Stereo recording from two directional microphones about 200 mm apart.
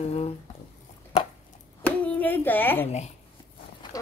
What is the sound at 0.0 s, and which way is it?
Speech, 30° left (ahead or behind).